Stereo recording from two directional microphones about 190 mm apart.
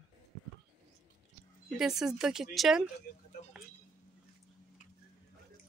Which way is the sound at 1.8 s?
Centre (ahead or behind).